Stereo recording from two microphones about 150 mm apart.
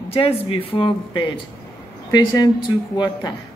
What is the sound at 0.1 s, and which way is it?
Speech, 40° left (ahead or behind).